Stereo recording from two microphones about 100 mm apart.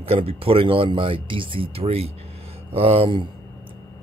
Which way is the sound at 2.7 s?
75° right (ahead or behind).